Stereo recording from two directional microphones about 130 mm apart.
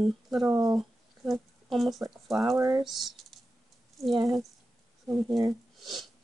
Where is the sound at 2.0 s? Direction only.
Centre (ahead or behind).